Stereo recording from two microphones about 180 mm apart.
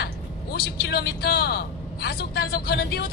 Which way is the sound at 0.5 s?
65° left (ahead or behind).